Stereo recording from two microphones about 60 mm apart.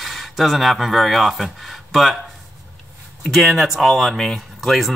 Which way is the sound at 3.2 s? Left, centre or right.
Centre.